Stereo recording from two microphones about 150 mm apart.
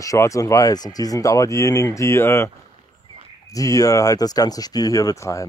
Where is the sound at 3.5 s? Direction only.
20° left (ahead or behind).